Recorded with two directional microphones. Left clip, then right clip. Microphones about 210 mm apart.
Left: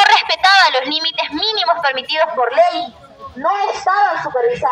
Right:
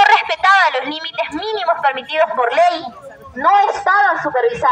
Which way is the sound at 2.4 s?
55° right (ahead or behind).